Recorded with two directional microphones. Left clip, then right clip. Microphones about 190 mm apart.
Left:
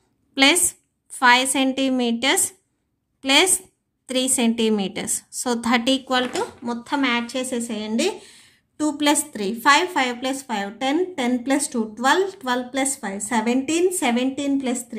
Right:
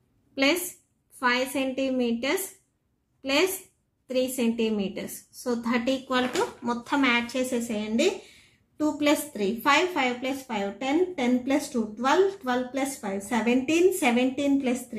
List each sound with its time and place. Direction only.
0.3 s a sound: 50° left (ahead or behind)
1.2 s a woman's voice: 50° left (ahead or behind)
6.6 s a woman's voice: 15° left (ahead or behind)
8.7 s a woman's voice: 40° left (ahead or behind)